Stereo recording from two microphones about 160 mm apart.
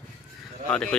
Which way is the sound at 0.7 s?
5° left (ahead or behind).